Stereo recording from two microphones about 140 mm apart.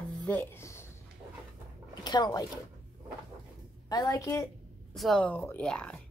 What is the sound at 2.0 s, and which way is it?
Speech, 30° left (ahead or behind).